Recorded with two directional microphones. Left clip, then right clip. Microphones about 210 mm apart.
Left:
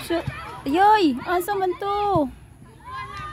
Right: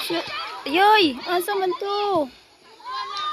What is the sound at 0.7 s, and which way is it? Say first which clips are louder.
Speech: even; 40° left (ahead or behind).